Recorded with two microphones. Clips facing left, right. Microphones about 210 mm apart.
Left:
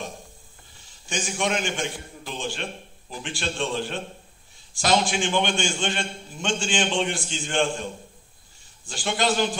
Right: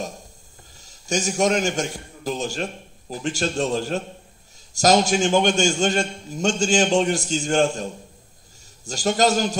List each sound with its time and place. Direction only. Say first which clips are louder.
0.7 s a man's voice: right 7 dB; 40° right (ahead or behind)